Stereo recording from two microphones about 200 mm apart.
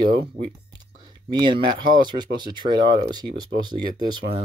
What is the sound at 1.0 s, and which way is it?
Speech, 20° right (ahead or behind).